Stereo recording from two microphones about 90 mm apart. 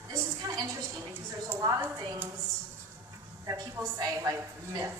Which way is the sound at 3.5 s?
40° right (ahead or behind).